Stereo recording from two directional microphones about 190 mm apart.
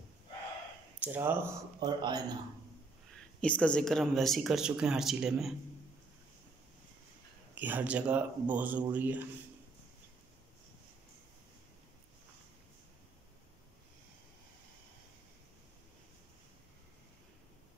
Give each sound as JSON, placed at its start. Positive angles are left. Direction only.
{"t": 0.9, "sound": "speech", "side_deg": -10}
{"t": 1.9, "sound": "speech", "side_deg": -25}
{"t": 3.3, "sound": "speech", "side_deg": 5}
{"t": 7.5, "sound": "speech", "side_deg": -10}